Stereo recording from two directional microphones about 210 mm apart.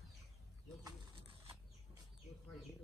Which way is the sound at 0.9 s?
25° right (ahead or behind).